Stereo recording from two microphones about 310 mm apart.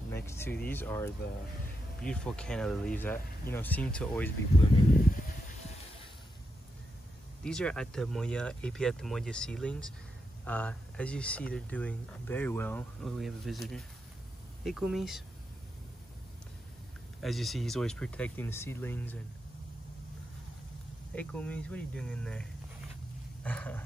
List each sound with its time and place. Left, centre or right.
0.1 s vehicle: centre
0.7 s speech: centre
7.4 s speech: centre
17.2 s speech: centre
21.1 s speech: centre